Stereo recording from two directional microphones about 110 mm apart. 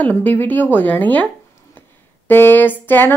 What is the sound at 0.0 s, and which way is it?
Speech, 15° left (ahead or behind).